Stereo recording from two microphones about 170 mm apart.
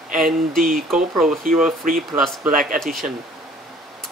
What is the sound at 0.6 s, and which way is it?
Speech, 55° right (ahead or behind).